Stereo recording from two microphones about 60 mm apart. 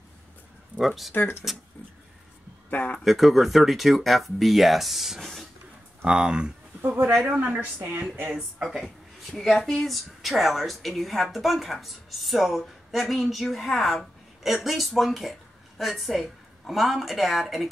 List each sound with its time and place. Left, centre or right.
0.7 s a woman's voice: centre
1.1 s speech: left
2.7 s speech: left
3.0 s a woman's voice: centre
6.0 s speech: centre
6.8 s a woman's voice: right
8.3 s speech: centre
8.8 s a woman's voice: centre